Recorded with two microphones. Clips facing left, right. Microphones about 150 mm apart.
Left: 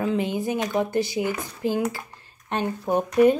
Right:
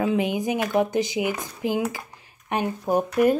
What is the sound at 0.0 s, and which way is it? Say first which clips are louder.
Speech: right 1 dB; 15° right (ahead or behind).